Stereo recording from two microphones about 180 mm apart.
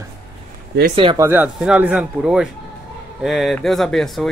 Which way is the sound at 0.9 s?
25° right (ahead or behind).